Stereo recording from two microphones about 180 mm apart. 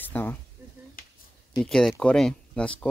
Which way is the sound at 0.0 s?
10° left (ahead or behind).